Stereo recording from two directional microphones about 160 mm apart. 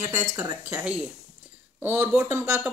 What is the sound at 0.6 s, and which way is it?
Speech, 10° right (ahead or behind).